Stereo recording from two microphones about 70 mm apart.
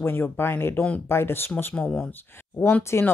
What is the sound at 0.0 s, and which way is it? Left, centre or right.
Speech, left.